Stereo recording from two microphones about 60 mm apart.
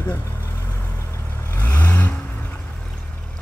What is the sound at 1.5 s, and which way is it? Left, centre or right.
Vehicle, left.